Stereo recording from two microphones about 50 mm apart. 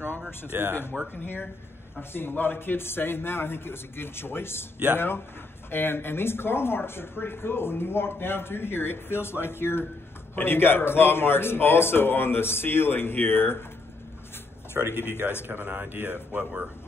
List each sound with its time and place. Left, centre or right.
0.5 s speech: right
1.2 s speech: left
14.8 s speech: right